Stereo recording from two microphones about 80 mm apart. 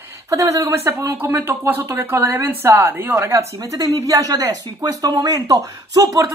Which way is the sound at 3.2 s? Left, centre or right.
Right.